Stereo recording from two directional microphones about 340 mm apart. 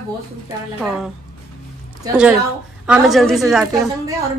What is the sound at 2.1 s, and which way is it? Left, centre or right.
Speech, centre.